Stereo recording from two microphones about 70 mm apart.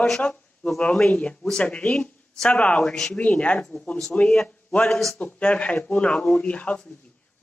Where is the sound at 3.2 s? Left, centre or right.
Centre.